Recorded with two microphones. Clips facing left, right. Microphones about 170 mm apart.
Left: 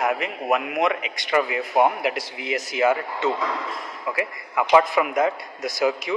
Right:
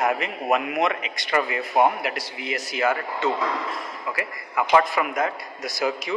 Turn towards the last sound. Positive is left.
turn(degrees=20)  # may be behind; listen again after turning